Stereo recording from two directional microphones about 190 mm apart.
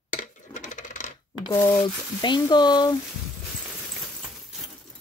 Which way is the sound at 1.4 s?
20° left (ahead or behind).